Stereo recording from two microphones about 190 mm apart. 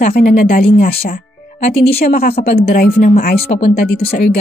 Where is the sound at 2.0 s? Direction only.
55° left (ahead or behind).